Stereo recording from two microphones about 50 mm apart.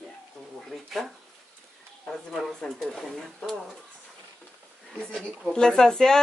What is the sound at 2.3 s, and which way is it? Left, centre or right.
Speech, centre.